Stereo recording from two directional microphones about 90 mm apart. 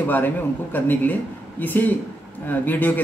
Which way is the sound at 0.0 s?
20° left (ahead or behind).